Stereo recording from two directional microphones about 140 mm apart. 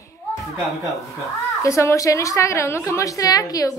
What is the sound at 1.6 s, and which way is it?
A woman's voice, 20° left (ahead or behind).